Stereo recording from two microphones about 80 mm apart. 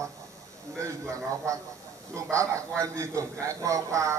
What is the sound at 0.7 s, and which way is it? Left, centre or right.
A man's voice, right.